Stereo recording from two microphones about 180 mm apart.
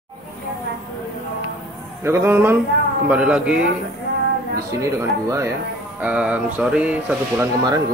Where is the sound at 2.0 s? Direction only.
10° right (ahead or behind).